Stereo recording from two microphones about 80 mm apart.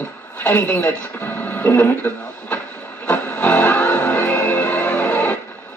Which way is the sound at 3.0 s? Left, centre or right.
Centre.